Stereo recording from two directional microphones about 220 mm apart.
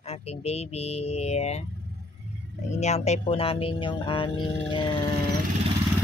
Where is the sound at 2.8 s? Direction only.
30° left (ahead or behind).